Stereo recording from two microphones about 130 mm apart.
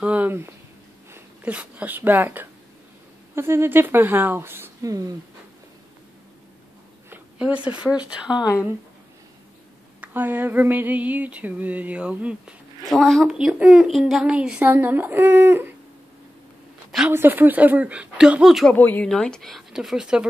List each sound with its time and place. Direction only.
0.0 s a woman's voice: 10° right (ahead or behind); by 5.1 s 25° right (ahead or behind)
7.1 s speech: 10° right (ahead or behind)
9.9 s a woman's voice: 15° right (ahead or behind)
12.8 s a woman's voice: centre (ahead or behind); by 15.7 s 15° right (ahead or behind)
17.1 s a woman's voice: 15° right (ahead or behind)
18.7 s speech: 10° left (ahead or behind); by 20.2 s 5° right (ahead or behind)